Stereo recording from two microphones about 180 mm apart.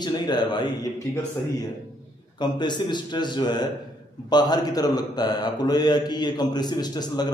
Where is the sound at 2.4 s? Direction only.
25° left (ahead or behind).